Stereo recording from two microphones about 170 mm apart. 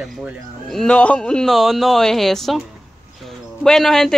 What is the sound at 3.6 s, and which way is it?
Speech, centre (ahead or behind).